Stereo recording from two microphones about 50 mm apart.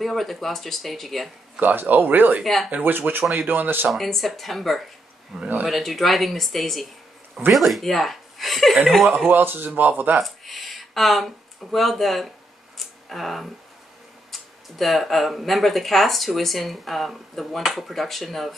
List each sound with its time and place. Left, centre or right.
0.0 s speech: centre
1.6 s speech: right
2.4 s speech: centre
2.8 s speech: right
3.9 s speech: centre
5.7 s speech: centre
9.3 s speech: right
10.1 s a sound: centre
11.7 s speech: centre
12.7 s a sound: centre
14.3 s speech: centre